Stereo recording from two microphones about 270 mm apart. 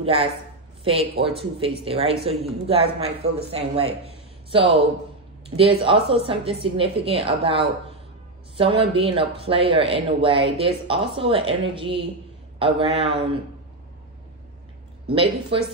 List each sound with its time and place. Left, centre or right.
0.0 s a woman's voice: right
15.0 s speech: centre